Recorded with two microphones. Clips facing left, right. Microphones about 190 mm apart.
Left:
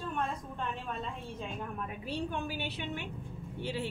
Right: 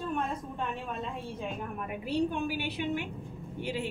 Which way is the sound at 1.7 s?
15° right (ahead or behind).